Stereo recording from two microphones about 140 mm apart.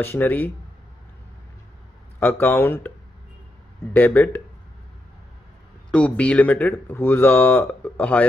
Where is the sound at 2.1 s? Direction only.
15° left (ahead or behind).